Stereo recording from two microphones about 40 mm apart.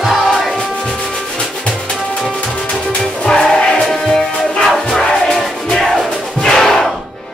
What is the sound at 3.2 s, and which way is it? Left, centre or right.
Music, centre.